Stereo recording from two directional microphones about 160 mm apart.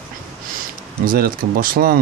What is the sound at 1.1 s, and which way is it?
Speech, 70° right (ahead or behind).